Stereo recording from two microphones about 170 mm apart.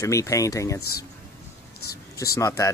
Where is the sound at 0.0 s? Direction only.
20° left (ahead or behind).